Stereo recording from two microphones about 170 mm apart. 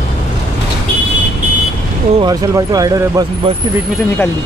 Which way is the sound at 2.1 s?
25° right (ahead or behind).